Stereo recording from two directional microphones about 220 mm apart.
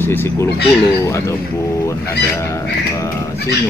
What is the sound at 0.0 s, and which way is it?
Speech, 10° left (ahead or behind).